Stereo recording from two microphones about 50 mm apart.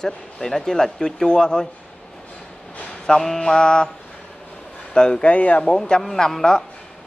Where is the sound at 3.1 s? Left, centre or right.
Centre.